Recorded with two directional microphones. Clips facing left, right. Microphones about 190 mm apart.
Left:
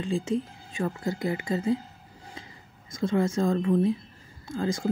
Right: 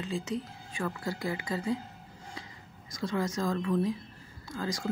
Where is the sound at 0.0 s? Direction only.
25° left (ahead or behind).